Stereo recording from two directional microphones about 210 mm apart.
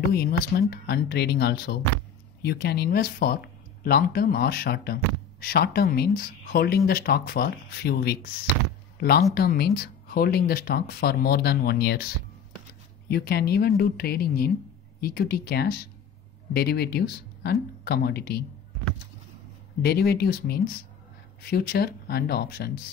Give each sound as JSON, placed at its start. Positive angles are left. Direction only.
{"t": 0.1, "sound": "speech", "side_deg": 50}
{"t": 9.3, "sound": "speech", "side_deg": 45}
{"t": 13.1, "sound": "speech", "side_deg": 50}
{"t": 19.8, "sound": "speech", "side_deg": 50}